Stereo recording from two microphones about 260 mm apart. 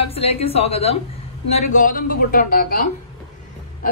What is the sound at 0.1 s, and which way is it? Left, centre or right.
A woman's voice, left.